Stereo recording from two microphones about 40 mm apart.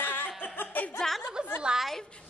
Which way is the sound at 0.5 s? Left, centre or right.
Left.